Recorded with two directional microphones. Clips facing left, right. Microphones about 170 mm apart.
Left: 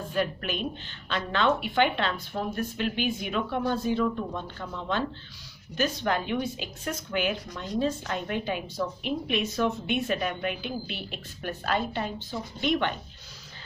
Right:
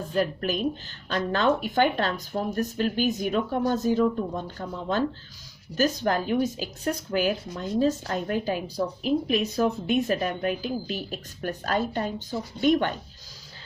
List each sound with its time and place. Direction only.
0.1 s a woman's voice: 35° right (ahead or behind)